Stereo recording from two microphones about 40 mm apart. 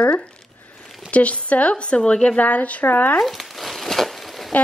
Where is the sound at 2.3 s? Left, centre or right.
Left.